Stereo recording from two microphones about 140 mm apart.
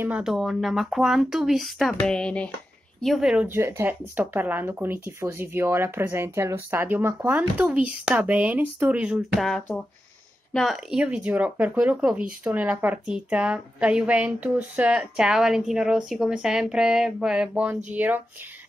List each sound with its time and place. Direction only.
0.0 s speech: 5° right (ahead or behind)
3.4 s speech: 20° right (ahead or behind)